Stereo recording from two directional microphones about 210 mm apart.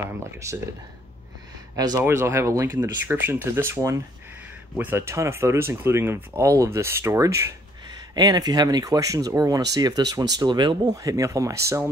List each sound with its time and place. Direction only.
0.4 s speech: 15° right (ahead or behind)
1.8 s speech: 15° right (ahead or behind)